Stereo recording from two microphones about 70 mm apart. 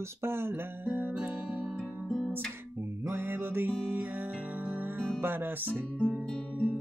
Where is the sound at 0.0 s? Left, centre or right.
Right.